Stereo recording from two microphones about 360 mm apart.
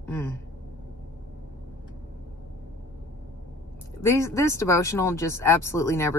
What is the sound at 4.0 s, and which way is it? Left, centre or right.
Speech, centre.